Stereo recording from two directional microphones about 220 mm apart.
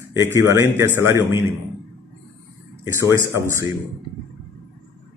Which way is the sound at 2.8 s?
15° right (ahead or behind).